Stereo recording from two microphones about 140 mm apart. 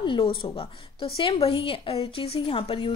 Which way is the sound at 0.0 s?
35° left (ahead or behind).